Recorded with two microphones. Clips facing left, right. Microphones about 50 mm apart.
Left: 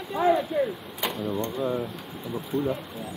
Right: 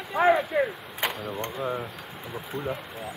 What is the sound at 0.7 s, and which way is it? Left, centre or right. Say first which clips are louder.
Speech: even; right.